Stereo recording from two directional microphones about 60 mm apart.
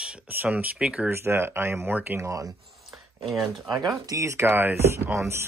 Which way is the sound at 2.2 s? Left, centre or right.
Right.